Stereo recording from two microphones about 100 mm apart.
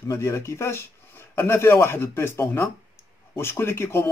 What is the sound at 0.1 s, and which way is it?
Speech, 25° left (ahead or behind).